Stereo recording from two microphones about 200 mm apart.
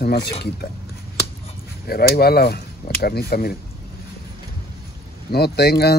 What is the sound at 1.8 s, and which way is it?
Speech, 50° left (ahead or behind).